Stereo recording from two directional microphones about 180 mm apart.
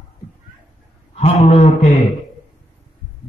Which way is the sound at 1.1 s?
35° left (ahead or behind).